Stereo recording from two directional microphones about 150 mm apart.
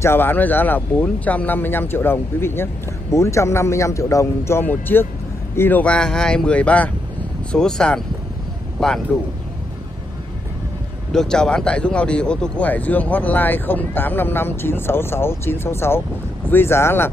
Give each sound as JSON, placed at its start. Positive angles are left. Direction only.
{"t": 0.0, "sound": "speech", "side_deg": 15}
{"t": 11.1, "sound": "speech", "side_deg": 5}